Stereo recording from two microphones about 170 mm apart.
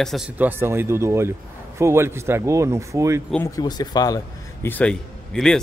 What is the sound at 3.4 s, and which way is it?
Speech, 20° left (ahead or behind).